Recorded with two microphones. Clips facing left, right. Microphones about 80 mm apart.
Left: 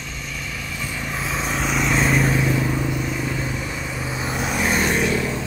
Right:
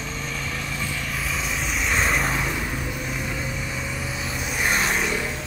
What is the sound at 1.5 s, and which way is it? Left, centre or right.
Vehicle, centre.